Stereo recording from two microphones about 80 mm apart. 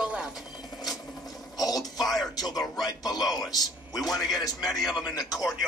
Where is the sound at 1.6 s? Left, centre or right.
Left.